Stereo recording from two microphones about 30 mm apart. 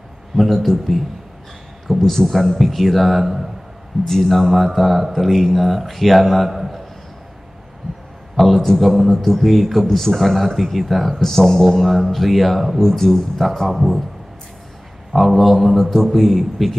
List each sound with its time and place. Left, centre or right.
0.5 s a man's voice: centre
8.4 s a man's voice: centre
9.8 s speech: centre
10.1 s a man's voice: centre
11.1 s a man's voice: centre
12.7 s a man's voice: centre
15.1 s a man's voice: centre
15.8 s a man's voice: centre